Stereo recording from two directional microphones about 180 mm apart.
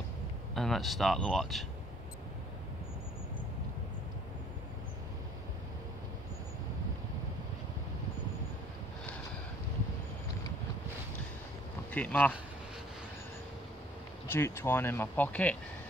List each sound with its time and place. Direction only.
0.6 s speech: centre (ahead or behind)
11.9 s speech: 10° left (ahead or behind)
14.2 s speech: 15° left (ahead or behind)